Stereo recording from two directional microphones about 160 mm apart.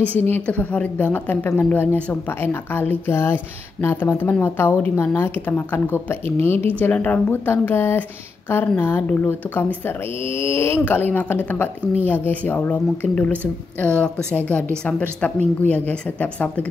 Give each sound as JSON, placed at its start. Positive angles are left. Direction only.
{"t": 0.0, "sound": "speech", "side_deg": 10}